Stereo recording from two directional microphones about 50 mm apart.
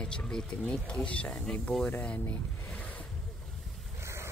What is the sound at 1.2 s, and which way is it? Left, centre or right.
Speech, centre.